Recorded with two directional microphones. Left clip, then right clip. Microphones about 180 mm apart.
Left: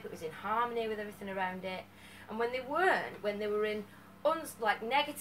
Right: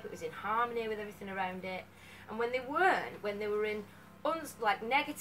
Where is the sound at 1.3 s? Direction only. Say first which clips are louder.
Left 1 dB; 10° right (ahead or behind).